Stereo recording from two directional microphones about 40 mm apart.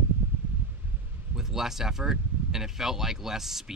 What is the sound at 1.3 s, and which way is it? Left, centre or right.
Speech, centre.